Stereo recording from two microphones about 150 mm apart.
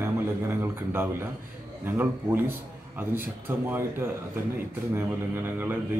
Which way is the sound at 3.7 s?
15° right (ahead or behind).